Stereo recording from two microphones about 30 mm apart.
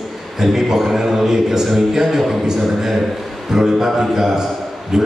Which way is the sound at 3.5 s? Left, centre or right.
Centre.